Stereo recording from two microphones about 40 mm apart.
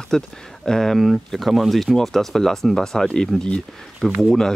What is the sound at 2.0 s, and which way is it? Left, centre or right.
Speech, centre.